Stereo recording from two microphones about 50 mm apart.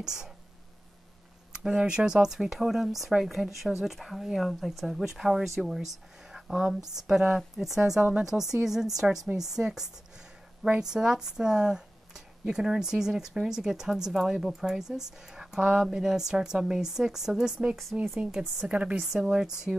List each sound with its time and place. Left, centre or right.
0.0 s speech: centre
1.5 s speech: centre
8.0 s speech: centre
8.3 s a woman's voice: centre; by 19.0 s right
19.1 s speech: centre